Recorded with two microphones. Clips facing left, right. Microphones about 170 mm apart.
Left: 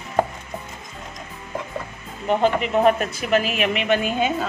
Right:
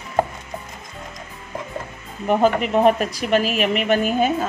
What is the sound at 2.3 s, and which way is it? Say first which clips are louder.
Speech: right 2 dB; 45° right (ahead or behind).